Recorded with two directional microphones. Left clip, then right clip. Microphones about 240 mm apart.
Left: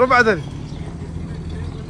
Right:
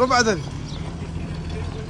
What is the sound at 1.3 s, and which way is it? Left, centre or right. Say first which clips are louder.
Vehicle: right 1 dB; centre.